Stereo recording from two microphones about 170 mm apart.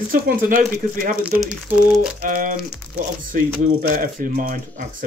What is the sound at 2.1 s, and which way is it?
Speech, 50° right (ahead or behind).